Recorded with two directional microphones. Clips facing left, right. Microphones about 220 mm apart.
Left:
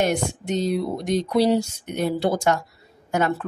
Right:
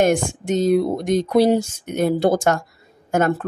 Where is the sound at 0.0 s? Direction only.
50° right (ahead or behind).